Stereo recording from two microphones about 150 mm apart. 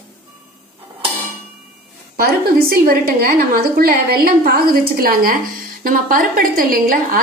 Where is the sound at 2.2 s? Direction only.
85° right.